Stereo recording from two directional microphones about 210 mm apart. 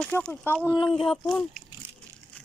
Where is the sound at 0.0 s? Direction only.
5° left (ahead or behind).